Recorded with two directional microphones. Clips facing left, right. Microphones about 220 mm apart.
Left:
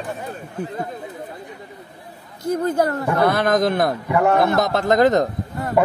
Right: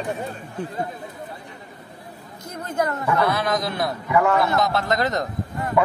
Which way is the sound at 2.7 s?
35° left (ahead or behind).